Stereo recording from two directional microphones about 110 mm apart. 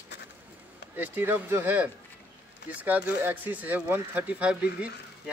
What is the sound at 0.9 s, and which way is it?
Speech, 15° right (ahead or behind).